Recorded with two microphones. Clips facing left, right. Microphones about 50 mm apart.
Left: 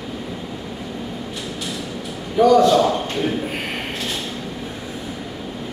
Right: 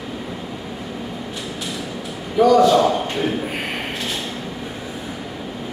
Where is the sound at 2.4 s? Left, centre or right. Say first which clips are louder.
Even; centre.